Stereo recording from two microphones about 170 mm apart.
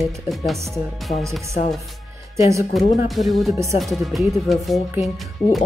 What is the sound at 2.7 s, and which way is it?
Speech, centre (ahead or behind).